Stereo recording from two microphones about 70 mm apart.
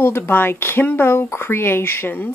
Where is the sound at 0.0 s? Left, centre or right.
Left.